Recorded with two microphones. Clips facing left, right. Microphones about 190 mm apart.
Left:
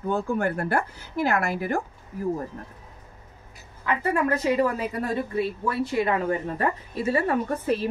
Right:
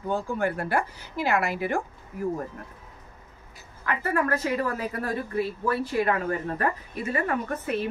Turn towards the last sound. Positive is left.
turn(degrees=35)  # may be behind; listen again after turning